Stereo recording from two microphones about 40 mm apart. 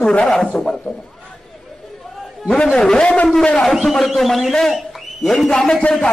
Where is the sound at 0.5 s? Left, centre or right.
Left.